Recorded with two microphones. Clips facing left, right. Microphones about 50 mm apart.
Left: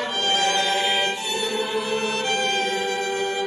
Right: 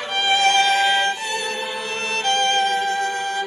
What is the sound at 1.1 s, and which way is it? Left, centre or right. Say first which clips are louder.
Music: right 1 dB; right.